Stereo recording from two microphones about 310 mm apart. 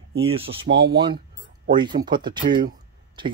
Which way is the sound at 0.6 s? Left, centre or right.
Right.